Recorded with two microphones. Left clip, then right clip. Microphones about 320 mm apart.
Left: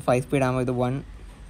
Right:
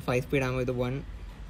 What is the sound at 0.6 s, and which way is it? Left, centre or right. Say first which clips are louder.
Speech: left 5 dB; left.